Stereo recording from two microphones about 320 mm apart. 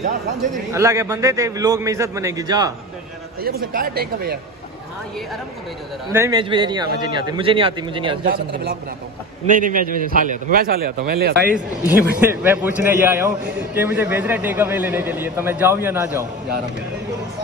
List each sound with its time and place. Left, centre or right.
0.7 s a man's voice: centre
3.4 s a man's voice: right
6.1 s a man's voice: centre
9.5 s a man's voice: right
11.5 s a man's voice: centre